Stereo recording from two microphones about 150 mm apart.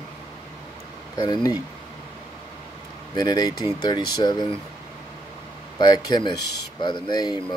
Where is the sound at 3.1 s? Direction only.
30° left (ahead or behind).